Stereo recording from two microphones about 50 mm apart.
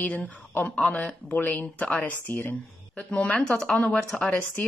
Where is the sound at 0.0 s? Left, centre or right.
Left.